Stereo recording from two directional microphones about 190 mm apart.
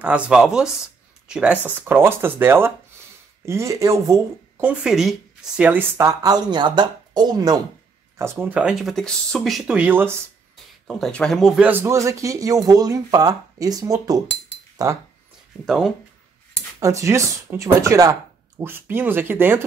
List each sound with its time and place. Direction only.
0.0 s speech: 5° right (ahead or behind)
10.9 s speech: 5° left (ahead or behind); by 14.9 s 20° right (ahead or behind)
15.6 s speech: centre (ahead or behind)
16.8 s speech: 15° right (ahead or behind)